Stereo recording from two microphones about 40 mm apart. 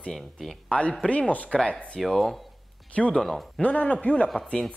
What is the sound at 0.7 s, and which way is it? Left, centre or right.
Speech, left.